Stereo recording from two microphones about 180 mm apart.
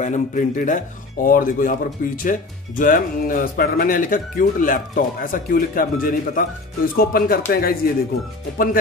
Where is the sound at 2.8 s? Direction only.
50° left (ahead or behind).